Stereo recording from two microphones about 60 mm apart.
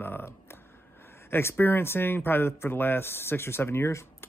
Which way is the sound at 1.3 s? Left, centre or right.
Left.